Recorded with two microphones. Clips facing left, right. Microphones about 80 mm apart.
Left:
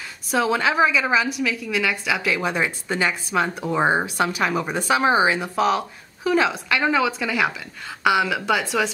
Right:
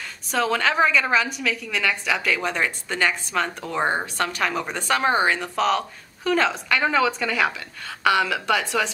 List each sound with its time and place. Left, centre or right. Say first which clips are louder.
0.3 s a woman's voice: left 2 dB; centre